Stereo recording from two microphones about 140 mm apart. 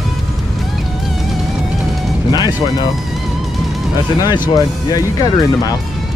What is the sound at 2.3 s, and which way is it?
Speech, 30° left (ahead or behind).